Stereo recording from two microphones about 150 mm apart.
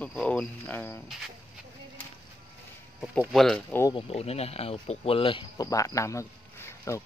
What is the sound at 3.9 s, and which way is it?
Speech, 45° left (ahead or behind).